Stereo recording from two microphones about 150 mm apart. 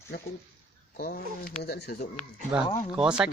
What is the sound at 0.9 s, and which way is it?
Speech, 80° left.